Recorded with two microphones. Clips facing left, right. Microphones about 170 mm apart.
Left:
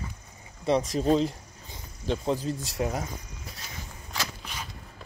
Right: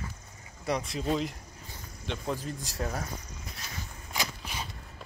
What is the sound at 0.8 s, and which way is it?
Speech, 40° left (ahead or behind).